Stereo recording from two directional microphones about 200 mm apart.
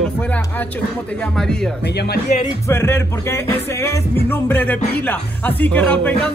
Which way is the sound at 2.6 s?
10° left (ahead or behind).